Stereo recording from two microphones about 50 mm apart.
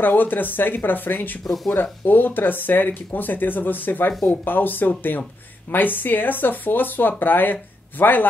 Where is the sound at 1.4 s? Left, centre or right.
Centre.